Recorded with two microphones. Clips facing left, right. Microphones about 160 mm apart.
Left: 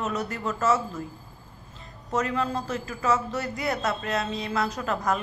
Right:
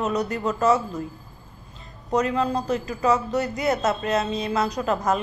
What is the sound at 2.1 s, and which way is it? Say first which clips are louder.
A woman's voice: right 4 dB; 20° right (ahead or behind).